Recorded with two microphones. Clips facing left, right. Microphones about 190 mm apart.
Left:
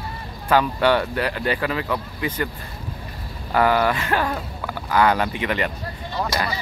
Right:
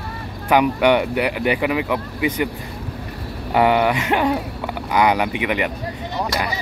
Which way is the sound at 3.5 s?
20° right (ahead or behind).